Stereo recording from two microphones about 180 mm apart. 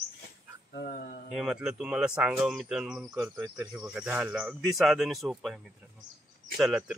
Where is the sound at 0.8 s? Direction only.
50° left (ahead or behind).